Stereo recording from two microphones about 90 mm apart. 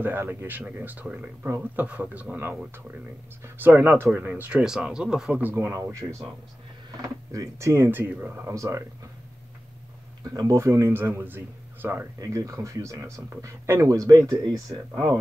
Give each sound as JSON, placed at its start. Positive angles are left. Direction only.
{"t": 0.0, "sound": "a man's voice", "side_deg": -20}
{"t": 5.4, "sound": "a man's voice", "side_deg": -25}
{"t": 6.9, "sound": "speech", "side_deg": -40}
{"t": 10.4, "sound": "a man's voice", "side_deg": -30}
{"t": 12.2, "sound": "speech", "side_deg": -40}